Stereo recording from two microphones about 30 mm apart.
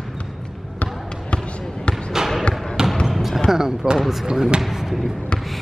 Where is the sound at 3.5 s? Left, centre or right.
Centre.